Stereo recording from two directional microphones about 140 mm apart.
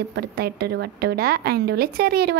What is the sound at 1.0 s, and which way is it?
Speech, 90° right.